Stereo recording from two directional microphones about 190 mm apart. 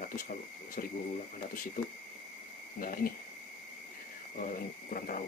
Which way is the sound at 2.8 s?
50° left (ahead or behind).